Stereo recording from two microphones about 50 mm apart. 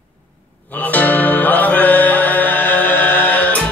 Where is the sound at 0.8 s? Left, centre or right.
Left.